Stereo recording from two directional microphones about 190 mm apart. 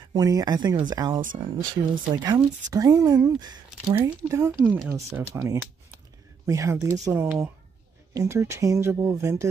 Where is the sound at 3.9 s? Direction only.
10° right (ahead or behind).